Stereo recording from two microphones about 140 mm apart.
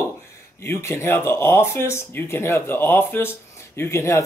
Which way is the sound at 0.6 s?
20° left (ahead or behind).